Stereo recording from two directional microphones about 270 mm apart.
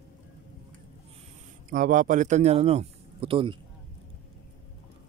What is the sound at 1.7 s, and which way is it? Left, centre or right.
Speech, right.